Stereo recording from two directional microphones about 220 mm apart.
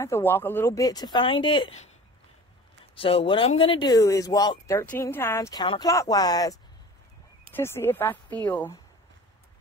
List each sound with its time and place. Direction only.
0.0 s speech: 10° left (ahead or behind)
3.0 s speech: 25° left (ahead or behind); by 8.7 s 5° left (ahead or behind)